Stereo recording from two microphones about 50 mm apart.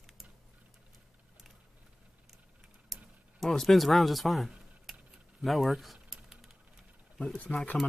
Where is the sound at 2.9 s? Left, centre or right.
Centre.